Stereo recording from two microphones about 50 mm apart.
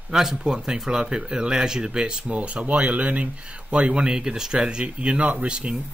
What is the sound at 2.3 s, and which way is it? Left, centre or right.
Speech, right.